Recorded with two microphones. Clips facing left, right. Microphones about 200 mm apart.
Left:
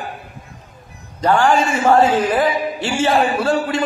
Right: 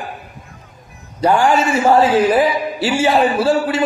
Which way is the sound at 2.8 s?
10° right (ahead or behind).